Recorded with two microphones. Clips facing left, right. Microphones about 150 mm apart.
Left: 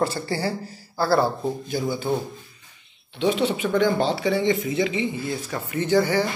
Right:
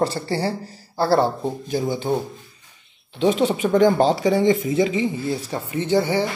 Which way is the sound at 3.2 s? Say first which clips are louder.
Right 3 dB; 40° right (ahead or behind).